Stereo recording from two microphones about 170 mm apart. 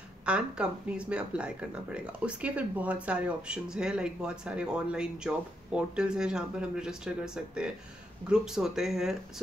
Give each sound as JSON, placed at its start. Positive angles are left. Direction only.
{"t": 0.2, "sound": "speech", "side_deg": -5}